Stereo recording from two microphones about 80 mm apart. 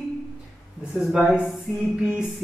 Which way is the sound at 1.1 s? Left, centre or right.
Centre.